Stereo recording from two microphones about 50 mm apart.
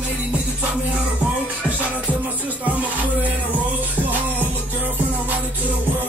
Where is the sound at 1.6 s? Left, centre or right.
Right.